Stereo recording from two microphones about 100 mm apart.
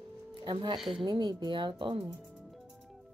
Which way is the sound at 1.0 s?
50° right (ahead or behind).